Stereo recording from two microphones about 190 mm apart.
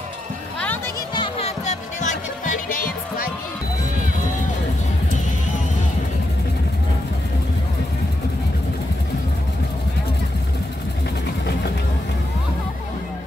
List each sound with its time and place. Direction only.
1.7 s music: 40° left (ahead or behind)